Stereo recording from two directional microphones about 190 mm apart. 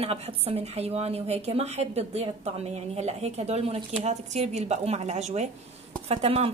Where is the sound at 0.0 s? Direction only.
30° right (ahead or behind).